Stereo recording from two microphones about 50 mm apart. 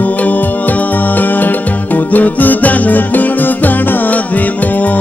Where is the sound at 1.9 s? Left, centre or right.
Left.